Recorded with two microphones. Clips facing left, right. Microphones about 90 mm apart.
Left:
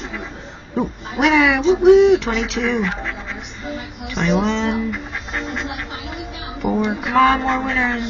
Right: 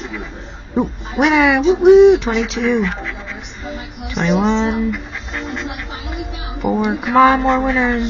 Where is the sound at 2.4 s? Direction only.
Centre (ahead or behind).